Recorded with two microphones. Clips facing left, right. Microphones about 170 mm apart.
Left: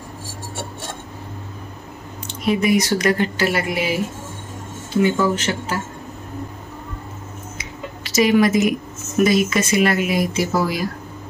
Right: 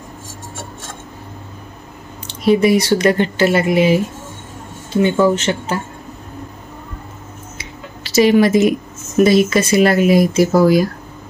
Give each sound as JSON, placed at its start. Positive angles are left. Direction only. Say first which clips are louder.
{"t": 2.2, "sound": "speech", "louder": "right 6 dB", "side_deg": -30}
{"t": 5.0, "sound": "speech", "louder": "right 5 dB", "side_deg": -25}
{"t": 7.5, "sound": "a sound", "louder": "left 2 dB", "side_deg": -30}
{"t": 9.2, "sound": "speech", "louder": "right 5 dB", "side_deg": -30}